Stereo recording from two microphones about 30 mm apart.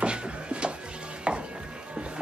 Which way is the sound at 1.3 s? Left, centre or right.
Right.